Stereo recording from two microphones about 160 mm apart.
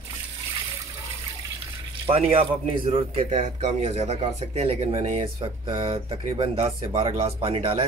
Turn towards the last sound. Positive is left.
turn(degrees=-35)  # may be behind; listen again after turning